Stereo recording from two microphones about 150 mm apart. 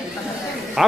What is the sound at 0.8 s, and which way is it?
Speech, centre (ahead or behind).